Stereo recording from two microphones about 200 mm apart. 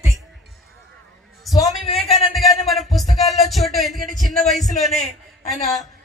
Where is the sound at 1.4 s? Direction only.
Centre (ahead or behind).